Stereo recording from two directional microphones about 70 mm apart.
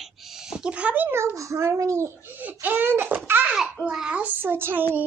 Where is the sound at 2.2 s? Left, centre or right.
Right.